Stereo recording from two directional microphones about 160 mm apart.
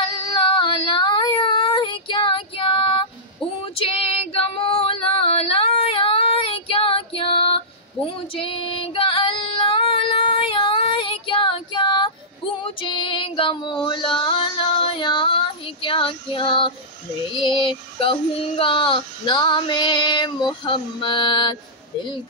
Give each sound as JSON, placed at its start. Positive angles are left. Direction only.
{"t": 0.0, "sound": "child singing", "side_deg": 30}
{"t": 3.6, "sound": "female singing", "side_deg": 35}
{"t": 17.3, "sound": "child singing", "side_deg": 30}